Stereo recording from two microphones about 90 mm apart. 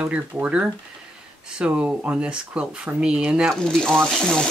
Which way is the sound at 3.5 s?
5° left (ahead or behind).